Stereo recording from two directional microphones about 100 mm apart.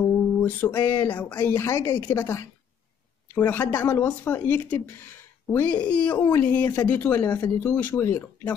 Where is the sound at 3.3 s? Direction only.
15° left (ahead or behind).